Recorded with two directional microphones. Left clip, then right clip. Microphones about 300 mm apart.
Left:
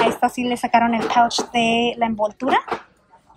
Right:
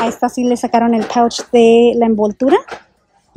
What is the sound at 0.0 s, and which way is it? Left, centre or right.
Speech, centre.